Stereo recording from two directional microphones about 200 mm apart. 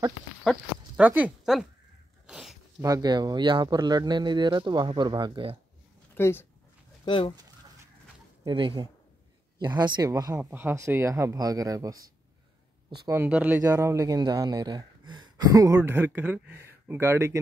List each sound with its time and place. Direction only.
0.4 s speech: centre (ahead or behind)
2.2 s a sound: 5° right (ahead or behind)
2.8 s speech: 20° right (ahead or behind)
6.1 s speech: 10° left (ahead or behind)
7.1 s speech: 25° left (ahead or behind)
8.5 s speech: 25° right (ahead or behind)
13.0 s speech: 10° right (ahead or behind)